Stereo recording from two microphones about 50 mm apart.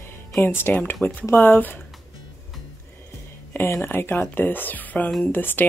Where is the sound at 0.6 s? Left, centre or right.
Left.